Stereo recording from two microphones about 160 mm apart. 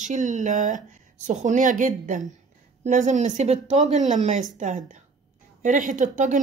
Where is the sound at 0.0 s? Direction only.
50° right (ahead or behind).